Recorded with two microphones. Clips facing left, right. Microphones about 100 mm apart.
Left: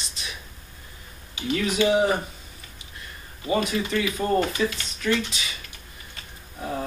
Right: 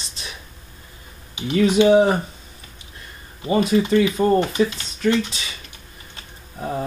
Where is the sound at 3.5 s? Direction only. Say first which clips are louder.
Right 7 dB; 30° right (ahead or behind).